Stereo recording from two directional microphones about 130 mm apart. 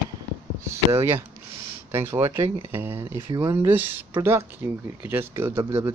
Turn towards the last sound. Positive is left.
turn(degrees=-20)  # may be behind; listen again after turning